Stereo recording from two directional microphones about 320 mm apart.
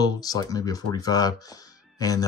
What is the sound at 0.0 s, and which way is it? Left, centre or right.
Speech, centre.